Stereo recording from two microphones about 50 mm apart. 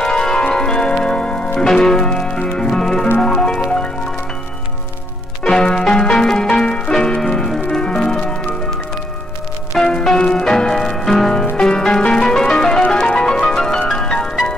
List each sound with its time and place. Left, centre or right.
0.0 s music: centre
5.4 s music: centre
9.7 s music: centre